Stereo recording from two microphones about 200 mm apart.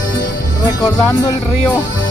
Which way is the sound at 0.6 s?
20° left (ahead or behind).